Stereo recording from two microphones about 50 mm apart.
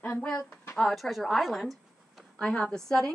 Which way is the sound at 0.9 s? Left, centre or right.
Centre.